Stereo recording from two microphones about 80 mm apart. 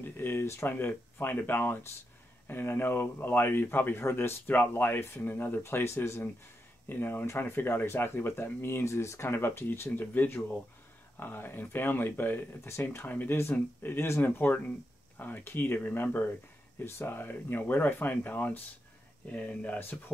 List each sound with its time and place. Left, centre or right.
0.0 s speech: left